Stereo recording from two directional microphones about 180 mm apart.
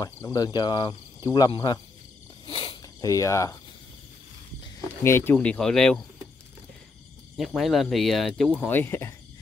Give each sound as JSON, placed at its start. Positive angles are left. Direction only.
{"t": 0.0, "sound": "speech", "side_deg": 20}
{"t": 2.4, "sound": "a sound", "side_deg": 25}
{"t": 5.0, "sound": "speech", "side_deg": 15}
{"t": 7.3, "sound": "speech", "side_deg": 0}